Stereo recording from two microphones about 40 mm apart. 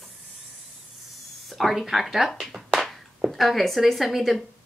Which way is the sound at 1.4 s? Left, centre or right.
Centre.